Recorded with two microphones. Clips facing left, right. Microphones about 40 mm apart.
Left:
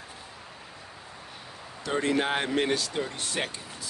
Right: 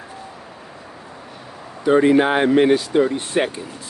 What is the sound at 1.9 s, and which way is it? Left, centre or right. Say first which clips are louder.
Speech: right 12 dB; right.